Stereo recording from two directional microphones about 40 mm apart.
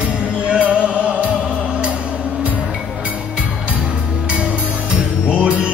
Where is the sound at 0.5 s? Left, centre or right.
Right.